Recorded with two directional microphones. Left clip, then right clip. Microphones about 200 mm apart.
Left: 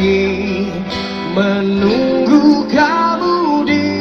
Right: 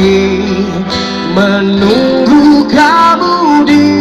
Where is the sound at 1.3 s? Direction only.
35° right (ahead or behind).